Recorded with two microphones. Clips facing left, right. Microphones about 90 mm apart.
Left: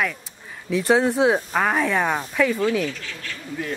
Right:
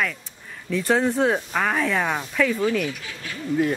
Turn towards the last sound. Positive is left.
turn(degrees=-15)  # may be behind; listen again after turning